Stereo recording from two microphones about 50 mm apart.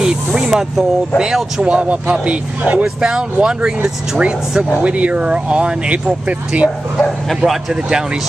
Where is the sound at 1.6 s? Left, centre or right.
Right.